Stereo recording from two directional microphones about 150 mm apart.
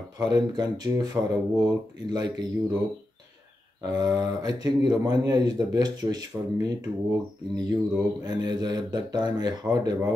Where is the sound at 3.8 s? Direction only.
25° right (ahead or behind).